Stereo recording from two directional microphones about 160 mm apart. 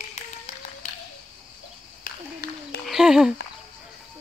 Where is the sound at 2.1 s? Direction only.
60° left (ahead or behind).